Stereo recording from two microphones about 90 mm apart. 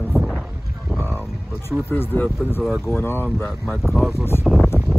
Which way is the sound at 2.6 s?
5° right (ahead or behind).